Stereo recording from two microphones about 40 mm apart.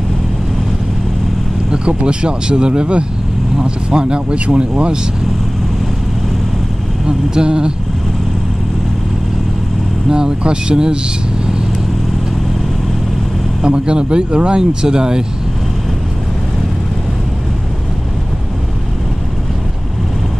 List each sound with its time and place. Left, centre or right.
1.7 s speech: right
7.1 s speech: centre
10.0 s speech: right
13.7 s speech: right